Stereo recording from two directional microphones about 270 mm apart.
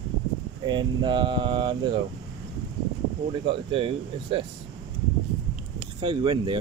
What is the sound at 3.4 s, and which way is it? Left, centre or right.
Speech, centre.